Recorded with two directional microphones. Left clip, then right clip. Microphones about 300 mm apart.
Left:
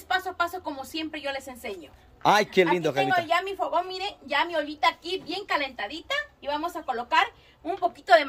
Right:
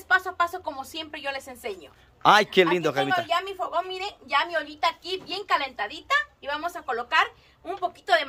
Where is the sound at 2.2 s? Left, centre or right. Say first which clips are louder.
Right 2 dB; centre.